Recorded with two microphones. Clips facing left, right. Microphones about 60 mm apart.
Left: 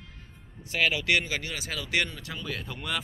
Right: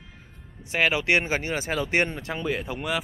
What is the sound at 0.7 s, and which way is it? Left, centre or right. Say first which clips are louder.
Speech: right 3 dB; right.